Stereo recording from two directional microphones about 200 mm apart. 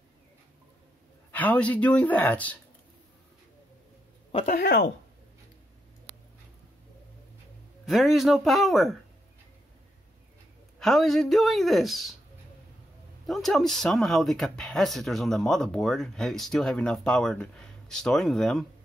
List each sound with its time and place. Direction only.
1.3 s speech: 10° left (ahead or behind)
4.3 s speech: 35° left (ahead or behind)
7.8 s speech: centre (ahead or behind)
10.8 s speech: centre (ahead or behind)
13.3 s speech: centre (ahead or behind)